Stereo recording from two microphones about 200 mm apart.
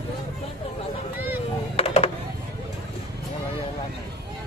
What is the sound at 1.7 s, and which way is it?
Music, 30° left (ahead or behind).